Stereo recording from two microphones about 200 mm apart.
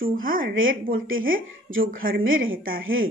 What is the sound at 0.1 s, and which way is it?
Speech, 45° right (ahead or behind).